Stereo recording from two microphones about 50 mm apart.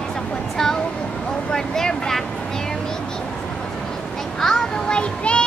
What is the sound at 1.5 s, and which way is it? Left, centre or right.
Vehicle, centre.